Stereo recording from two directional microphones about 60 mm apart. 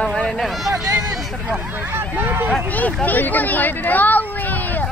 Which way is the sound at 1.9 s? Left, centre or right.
Right.